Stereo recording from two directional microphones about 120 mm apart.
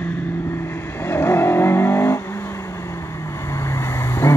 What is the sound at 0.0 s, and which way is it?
Vehicle, 15° left (ahead or behind).